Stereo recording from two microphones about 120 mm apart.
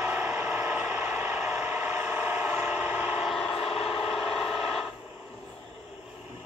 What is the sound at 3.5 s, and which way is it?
Vehicle, 55° left (ahead or behind).